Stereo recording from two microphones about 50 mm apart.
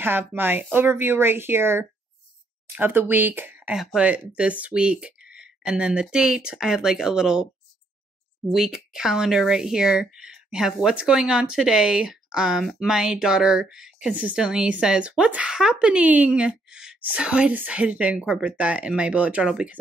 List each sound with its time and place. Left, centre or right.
0.0 s speech: right
4.0 s speech: right
8.5 s speech: centre
14.0 s speech: right
14.3 s a woman's voice: centre